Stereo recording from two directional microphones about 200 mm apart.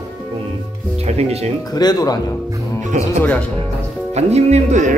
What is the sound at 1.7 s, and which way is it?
Speech, 20° left (ahead or behind).